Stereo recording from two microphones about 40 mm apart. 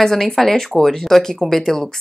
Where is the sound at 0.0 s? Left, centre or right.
Centre.